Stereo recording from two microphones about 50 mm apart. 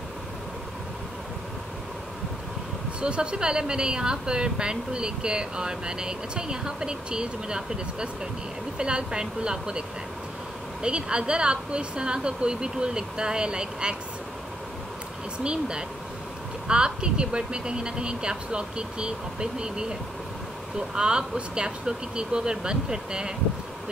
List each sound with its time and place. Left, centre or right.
3.0 s a woman's voice: centre
15.3 s a woman's voice: centre